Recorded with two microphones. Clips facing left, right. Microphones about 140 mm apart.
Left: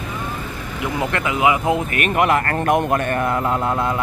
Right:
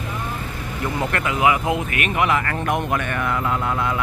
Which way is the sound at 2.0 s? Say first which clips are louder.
Left 4 dB; 45° left (ahead or behind).